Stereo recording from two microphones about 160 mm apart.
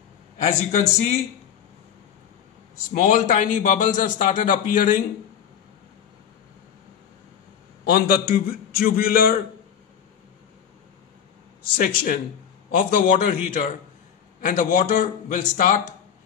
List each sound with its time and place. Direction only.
0.4 s a man's voice: 45° left (ahead or behind)
2.9 s a man's voice: 55° left (ahead or behind)
7.8 s a man's voice: 70° left (ahead or behind)
11.7 s a man's voice: 60° left (ahead or behind)